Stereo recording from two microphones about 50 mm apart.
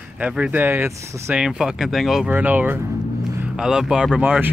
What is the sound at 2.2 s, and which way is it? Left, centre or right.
Speech, right.